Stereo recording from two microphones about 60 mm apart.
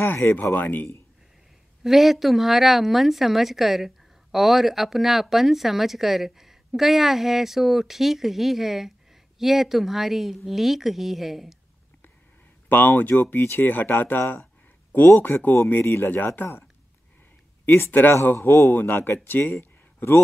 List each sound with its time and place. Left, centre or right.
0.0 s speech: left
1.8 s speech: centre
12.6 s speech: left
15.8 s speech: left
16.4 s speech: left
17.6 s speech: left